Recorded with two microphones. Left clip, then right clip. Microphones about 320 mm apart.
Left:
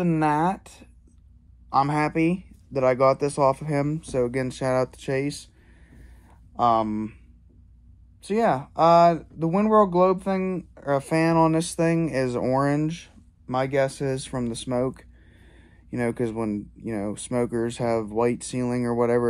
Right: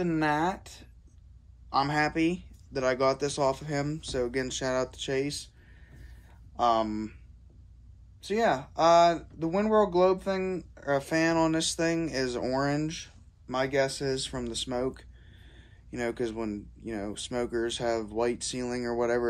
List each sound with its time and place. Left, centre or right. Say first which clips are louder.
0.0 s speech: left 5 dB; centre
6.5 s speech: left 5 dB; centre
8.2 s speech: left 4 dB; centre